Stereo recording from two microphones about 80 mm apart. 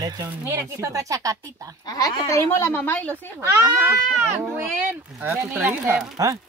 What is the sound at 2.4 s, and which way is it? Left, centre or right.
Speech, left.